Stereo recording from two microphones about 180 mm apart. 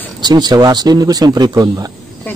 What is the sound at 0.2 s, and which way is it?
Speech, 25° right (ahead or behind).